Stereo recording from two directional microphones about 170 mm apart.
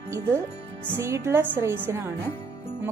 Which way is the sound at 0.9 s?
15° right (ahead or behind).